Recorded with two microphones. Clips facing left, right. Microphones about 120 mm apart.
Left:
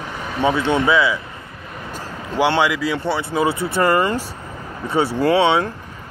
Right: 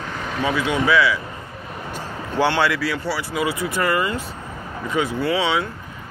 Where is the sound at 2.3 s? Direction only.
15° left (ahead or behind).